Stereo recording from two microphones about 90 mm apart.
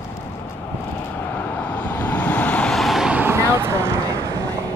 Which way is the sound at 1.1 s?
20° left (ahead or behind).